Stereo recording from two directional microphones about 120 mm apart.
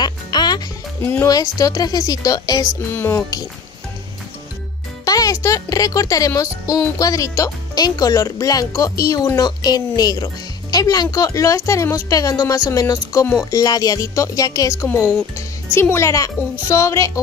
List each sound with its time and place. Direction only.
0.0 s music: 35° left (ahead or behind)
1.2 s speech: 30° left (ahead or behind)
5.0 s speech: 30° left (ahead or behind)